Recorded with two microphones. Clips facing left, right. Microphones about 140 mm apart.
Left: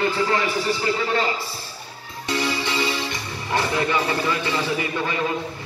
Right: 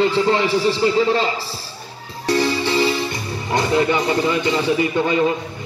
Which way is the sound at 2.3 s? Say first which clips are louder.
Right 6 dB; 35° right (ahead or behind).